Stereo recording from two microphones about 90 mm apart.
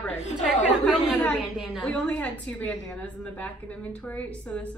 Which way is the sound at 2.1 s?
15° left (ahead or behind).